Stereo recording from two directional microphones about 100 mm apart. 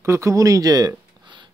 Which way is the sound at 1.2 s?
50° right (ahead or behind).